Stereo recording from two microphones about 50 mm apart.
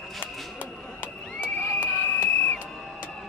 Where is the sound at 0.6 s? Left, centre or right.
Left.